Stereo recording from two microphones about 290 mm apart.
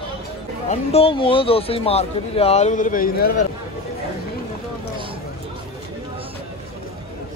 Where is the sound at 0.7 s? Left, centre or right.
Centre.